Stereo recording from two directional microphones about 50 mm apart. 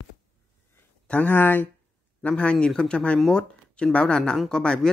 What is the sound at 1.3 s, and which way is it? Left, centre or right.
Speech, left.